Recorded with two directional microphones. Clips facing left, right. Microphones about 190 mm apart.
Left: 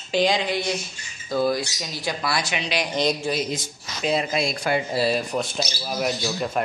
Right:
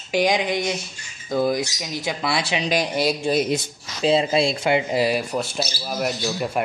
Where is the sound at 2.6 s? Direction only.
40° right (ahead or behind).